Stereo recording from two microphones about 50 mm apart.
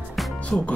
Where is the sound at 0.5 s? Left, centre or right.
Centre.